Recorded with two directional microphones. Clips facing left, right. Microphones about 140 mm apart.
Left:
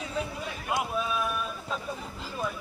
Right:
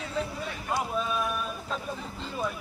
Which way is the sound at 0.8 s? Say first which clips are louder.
Right 1 dB; 5° left (ahead or behind).